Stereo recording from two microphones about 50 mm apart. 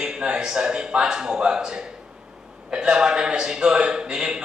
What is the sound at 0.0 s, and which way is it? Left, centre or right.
A man's voice, centre.